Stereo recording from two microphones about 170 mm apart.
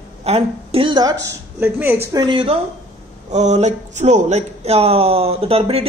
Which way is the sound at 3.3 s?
40° right (ahead or behind).